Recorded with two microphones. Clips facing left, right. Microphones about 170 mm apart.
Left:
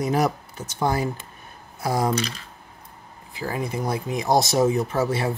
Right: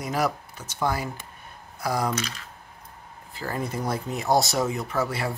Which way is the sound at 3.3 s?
10° left (ahead or behind).